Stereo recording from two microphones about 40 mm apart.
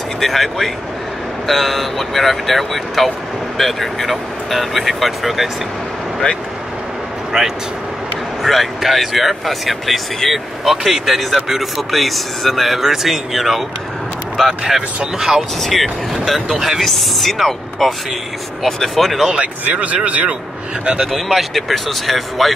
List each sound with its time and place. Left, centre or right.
0.2 s speech: centre
7.3 s speech: centre
8.5 s speech: centre
15.6 s speech: centre
16.8 s speech: centre
18.9 s speech: centre
19.3 s a man's voice: right
21.1 s speech: centre